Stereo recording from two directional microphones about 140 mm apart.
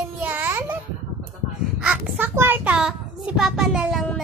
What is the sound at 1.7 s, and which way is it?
A child's voice, 10° right (ahead or behind).